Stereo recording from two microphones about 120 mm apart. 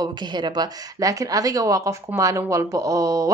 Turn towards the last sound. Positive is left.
turn(degrees=-30)  # may be behind; listen again after turning